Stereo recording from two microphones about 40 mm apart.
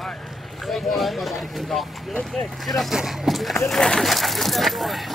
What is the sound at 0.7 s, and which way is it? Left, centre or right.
Vehicle, centre.